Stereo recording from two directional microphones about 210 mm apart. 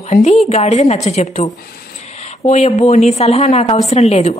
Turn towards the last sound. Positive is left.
turn(degrees=30)  # may be behind; listen again after turning